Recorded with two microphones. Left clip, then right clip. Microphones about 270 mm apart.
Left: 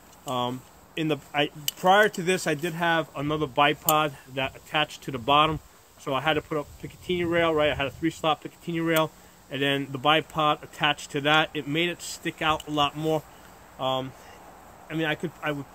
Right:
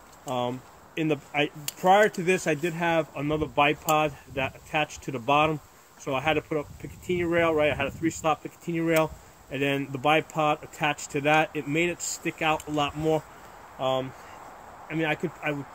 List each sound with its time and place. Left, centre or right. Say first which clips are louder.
0.3 s speech: even; centre
12.1 s speech: right 1 dB; left
12.4 s speech: left 2 dB; centre